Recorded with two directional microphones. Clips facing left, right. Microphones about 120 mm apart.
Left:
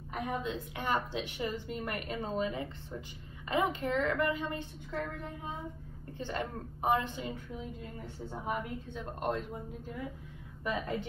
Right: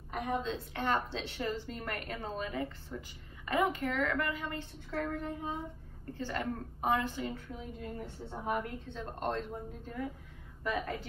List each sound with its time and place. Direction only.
0.1 s a woman's voice: 10° left (ahead or behind)
4.9 s a woman's voice: centre (ahead or behind)
6.1 s a woman's voice: 25° left (ahead or behind)
8.3 s a woman's voice: centre (ahead or behind)
8.8 s a woman's voice: 10° left (ahead or behind)
10.6 s a woman's voice: 20° left (ahead or behind)